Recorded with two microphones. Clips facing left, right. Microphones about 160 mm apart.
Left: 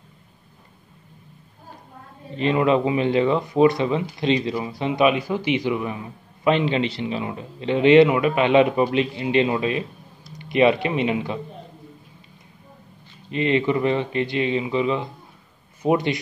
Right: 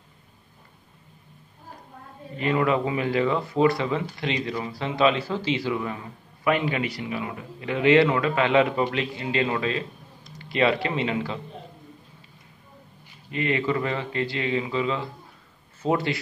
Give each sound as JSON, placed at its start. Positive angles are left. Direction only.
{"t": 2.3, "sound": "speech", "side_deg": 20}
{"t": 13.3, "sound": "speech", "side_deg": 20}